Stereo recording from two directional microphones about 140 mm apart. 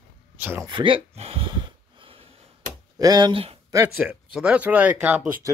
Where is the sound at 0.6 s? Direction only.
35° right (ahead or behind).